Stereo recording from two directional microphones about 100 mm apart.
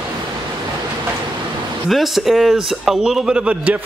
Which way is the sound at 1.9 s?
Centre (ahead or behind).